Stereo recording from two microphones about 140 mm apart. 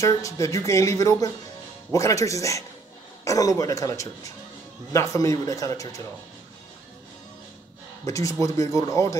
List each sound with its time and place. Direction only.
0.0 s speech: 25° left (ahead or behind)
8.0 s speech: 25° left (ahead or behind)